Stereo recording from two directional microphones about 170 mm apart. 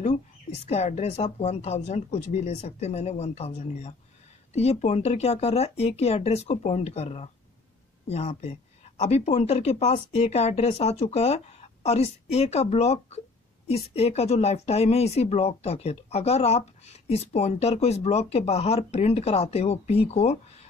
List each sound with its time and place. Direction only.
0.0 s speech: 40° left (ahead or behind)